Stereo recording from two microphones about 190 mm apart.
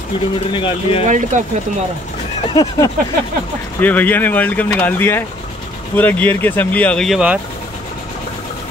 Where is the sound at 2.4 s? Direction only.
20° left (ahead or behind).